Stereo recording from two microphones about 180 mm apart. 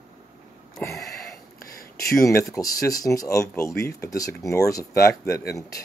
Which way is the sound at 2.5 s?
20° left (ahead or behind).